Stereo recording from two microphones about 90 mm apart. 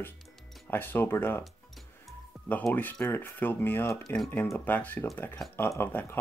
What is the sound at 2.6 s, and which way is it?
Speech, 20° left (ahead or behind).